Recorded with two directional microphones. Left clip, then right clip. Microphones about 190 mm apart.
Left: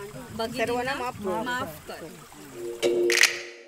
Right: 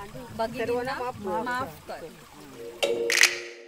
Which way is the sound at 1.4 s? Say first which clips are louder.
Even; 5° left (ahead or behind).